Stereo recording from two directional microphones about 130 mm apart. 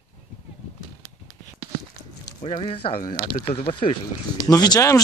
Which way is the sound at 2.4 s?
50° left (ahead or behind).